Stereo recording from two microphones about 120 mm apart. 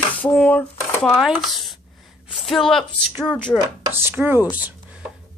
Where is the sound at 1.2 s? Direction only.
Centre (ahead or behind).